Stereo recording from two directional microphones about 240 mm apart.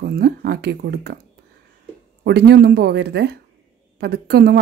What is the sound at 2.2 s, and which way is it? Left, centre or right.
Speech, right.